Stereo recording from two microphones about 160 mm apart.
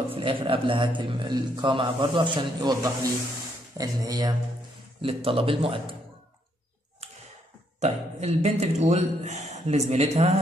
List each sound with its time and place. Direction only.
0.1 s a man's voice: 35° right (ahead or behind)
5.0 s a man's voice: 35° right (ahead or behind)
7.8 s a man's voice: 45° right (ahead or behind)